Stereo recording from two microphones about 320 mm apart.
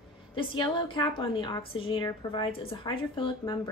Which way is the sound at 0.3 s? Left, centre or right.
Centre.